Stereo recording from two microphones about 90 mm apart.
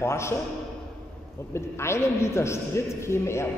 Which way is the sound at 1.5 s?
30° left (ahead or behind).